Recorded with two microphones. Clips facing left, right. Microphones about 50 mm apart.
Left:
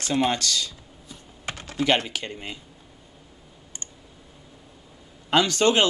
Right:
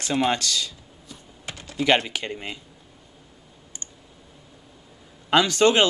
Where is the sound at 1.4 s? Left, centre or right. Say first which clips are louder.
Left 1 dB; left.